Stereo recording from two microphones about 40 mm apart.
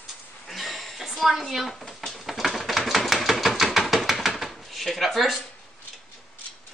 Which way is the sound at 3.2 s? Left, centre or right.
Centre.